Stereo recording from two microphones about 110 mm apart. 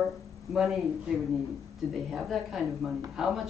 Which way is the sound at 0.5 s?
5° right (ahead or behind).